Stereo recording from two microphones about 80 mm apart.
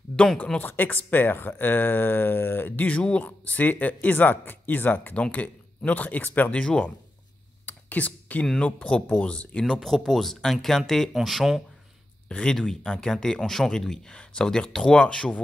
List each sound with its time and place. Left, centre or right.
0.1 s a sound: centre
0.6 s speech: left
7.6 s a sound: centre
8.5 s speech: centre
9.8 s speech: centre
12.3 s speech: centre